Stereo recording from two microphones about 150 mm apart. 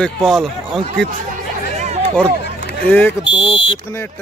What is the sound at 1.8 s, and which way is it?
Hubbub, 45° right (ahead or behind).